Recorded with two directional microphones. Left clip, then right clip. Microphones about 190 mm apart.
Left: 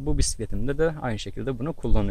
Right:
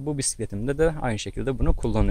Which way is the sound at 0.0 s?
5° right (ahead or behind).